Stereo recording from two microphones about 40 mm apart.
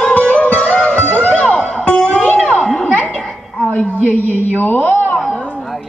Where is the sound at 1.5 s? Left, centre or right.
Centre.